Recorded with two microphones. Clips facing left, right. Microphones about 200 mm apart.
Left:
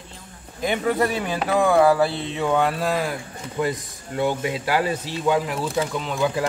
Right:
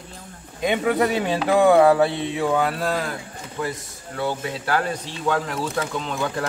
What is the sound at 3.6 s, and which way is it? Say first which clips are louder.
A man's voice: left 4 dB; 20° left (ahead or behind).